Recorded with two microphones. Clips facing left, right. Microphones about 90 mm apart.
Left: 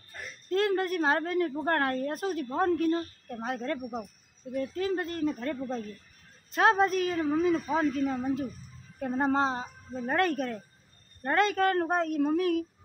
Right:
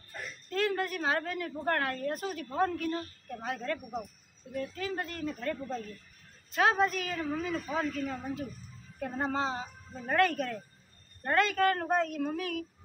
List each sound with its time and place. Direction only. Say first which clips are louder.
0.5 s a woman's voice: left 4 dB; 35° left (ahead or behind)